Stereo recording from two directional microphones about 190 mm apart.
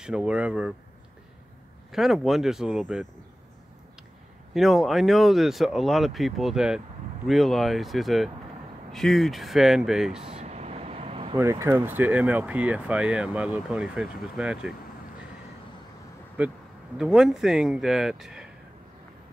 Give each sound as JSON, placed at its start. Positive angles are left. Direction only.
{"t": 0.0, "sound": "speech", "side_deg": -5}
{"t": 1.9, "sound": "speech", "side_deg": 0}
{"t": 4.6, "sound": "speech", "side_deg": 0}
{"t": 10.2, "sound": "vehicle", "side_deg": -35}
{"t": 11.3, "sound": "speech", "side_deg": -15}
{"t": 16.3, "sound": "speech", "side_deg": -5}